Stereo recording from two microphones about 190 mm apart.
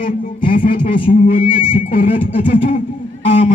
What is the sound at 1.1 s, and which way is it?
Speech, 40° left (ahead or behind).